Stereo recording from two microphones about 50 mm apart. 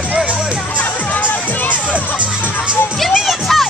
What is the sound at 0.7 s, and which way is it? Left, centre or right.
Music, left.